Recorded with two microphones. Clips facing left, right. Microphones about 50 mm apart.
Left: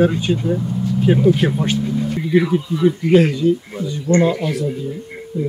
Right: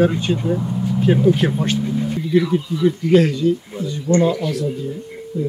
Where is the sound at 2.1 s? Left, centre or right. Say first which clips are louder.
Left 1 dB; left.